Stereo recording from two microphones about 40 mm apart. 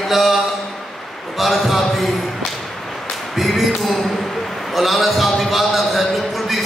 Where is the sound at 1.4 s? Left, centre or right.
Centre.